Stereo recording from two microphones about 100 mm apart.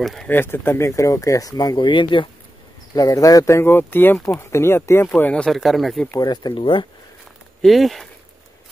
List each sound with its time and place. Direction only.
0.0 s speech: centre (ahead or behind)
0.3 s speech: 20° left (ahead or behind); by 2.2 s 55° left (ahead or behind)
2.9 s speech: 35° left (ahead or behind); by 5.5 s 15° left (ahead or behind)
5.5 s speech: centre (ahead or behind)
6.1 s speech: 45° left (ahead or behind)
6.5 s speech: 60° left (ahead or behind)
7.6 s speech: centre (ahead or behind)